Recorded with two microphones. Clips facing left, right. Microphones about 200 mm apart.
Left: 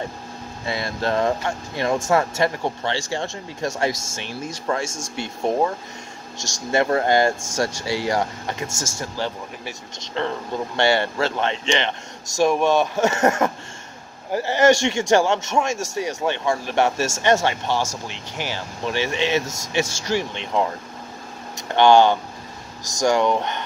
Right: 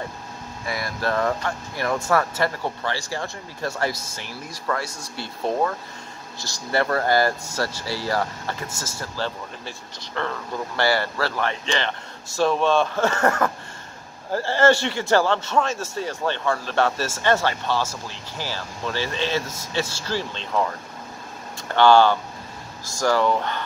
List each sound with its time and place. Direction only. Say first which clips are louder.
0.7 s speech: left 2 dB; 25° left (ahead or behind)
6.3 s speech: left 4 dB; 90° left
6.7 s speech: left 2 dB; 20° left (ahead or behind)